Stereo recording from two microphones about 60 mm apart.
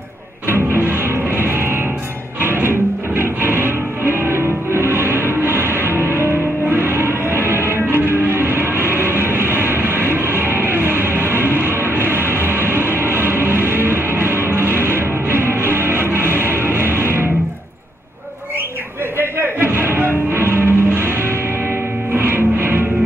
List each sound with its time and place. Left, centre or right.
0.5 s music: right
19.1 s music: right
22.1 s music: right